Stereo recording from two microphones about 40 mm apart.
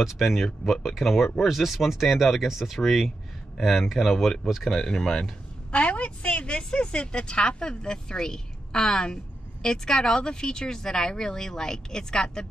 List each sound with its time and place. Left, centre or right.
0.0 s speech: centre
5.0 s speech: centre
5.7 s a woman's voice: left